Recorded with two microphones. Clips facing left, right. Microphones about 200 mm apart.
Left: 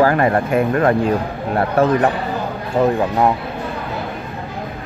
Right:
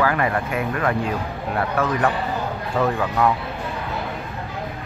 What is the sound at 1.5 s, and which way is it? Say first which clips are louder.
Speech: left 7 dB; 30° left (ahead or behind).